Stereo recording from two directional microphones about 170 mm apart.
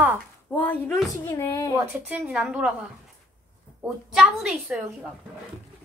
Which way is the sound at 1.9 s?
5° right (ahead or behind).